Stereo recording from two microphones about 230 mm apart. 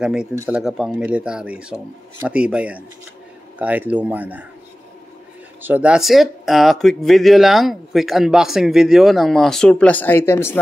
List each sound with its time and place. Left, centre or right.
0.0 s speech: centre
5.6 s speech: centre